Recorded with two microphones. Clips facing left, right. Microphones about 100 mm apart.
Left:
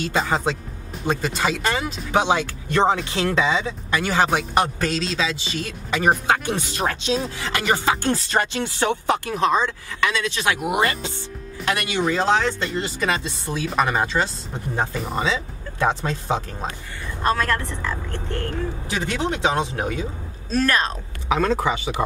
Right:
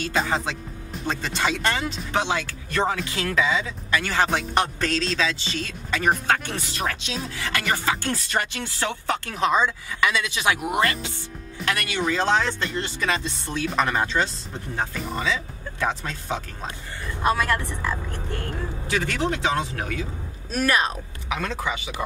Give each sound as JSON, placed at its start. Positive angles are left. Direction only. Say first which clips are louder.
{"t": 1.0, "sound": "speech", "louder": "left 3 dB", "side_deg": 10}
{"t": 2.2, "sound": "speech", "louder": "left 5 dB", "side_deg": 20}
{"t": 4.0, "sound": "speech", "louder": "left 5 dB", "side_deg": 15}
{"t": 6.8, "sound": "speech", "louder": "left 5 dB", "side_deg": 30}
{"t": 9.3, "sound": "speech", "louder": "right 1 dB", "side_deg": -5}
{"t": 10.8, "sound": "speech", "louder": "left 2 dB", "side_deg": 25}
{"t": 12.0, "sound": "speech", "louder": "left 2 dB", "side_deg": 5}
{"t": 14.8, "sound": "speech", "louder": "left 4 dB", "side_deg": 25}
{"t": 17.2, "sound": "speech", "louder": "left 1 dB", "side_deg": -10}
{"t": 18.9, "sound": "speech", "louder": "right 1 dB", "side_deg": 20}
{"t": 20.5, "sound": "speech", "louder": "left 2 dB", "side_deg": -10}
{"t": 21.3, "sound": "speech", "louder": "left 7 dB", "side_deg": 40}